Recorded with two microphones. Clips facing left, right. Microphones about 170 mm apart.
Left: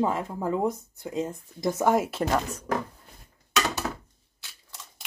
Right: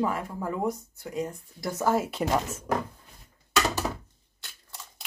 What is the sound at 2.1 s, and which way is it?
Speech, centre (ahead or behind).